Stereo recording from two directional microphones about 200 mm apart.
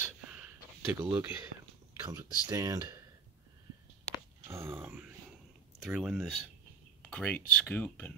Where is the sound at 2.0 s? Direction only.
20° right (ahead or behind).